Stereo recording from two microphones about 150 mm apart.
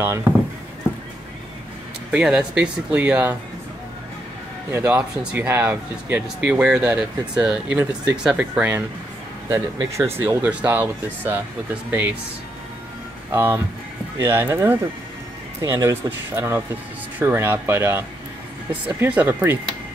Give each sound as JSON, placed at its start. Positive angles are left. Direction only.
{"t": 0.0, "sound": "speech", "side_deg": -15}
{"t": 2.0, "sound": "speech", "side_deg": -5}
{"t": 4.6, "sound": "speech", "side_deg": -15}
{"t": 13.3, "sound": "speech", "side_deg": -15}